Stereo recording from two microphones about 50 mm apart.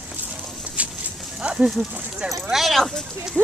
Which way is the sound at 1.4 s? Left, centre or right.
Right.